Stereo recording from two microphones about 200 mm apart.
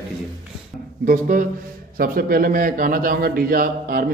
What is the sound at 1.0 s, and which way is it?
A man's voice, 40° right (ahead or behind).